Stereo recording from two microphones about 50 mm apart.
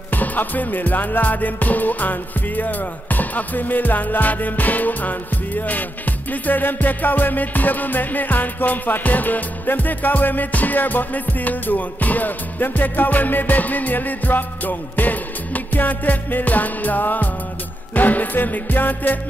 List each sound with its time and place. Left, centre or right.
0.1 s music: left